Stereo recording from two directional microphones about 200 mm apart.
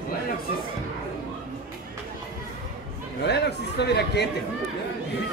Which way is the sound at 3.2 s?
55° left (ahead or behind).